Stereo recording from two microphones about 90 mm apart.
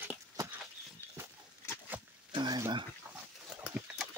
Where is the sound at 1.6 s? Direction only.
30° left (ahead or behind).